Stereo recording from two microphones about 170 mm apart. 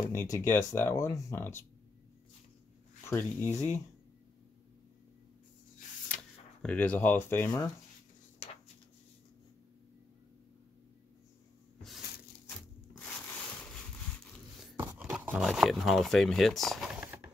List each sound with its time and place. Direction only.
0.1 s speech: 15° left (ahead or behind)
3.1 s speech: 10° left (ahead or behind)
6.6 s speech: 10° left (ahead or behind)
12.4 s a sound: 10° left (ahead or behind)
14.8 s speech: 10° right (ahead or behind)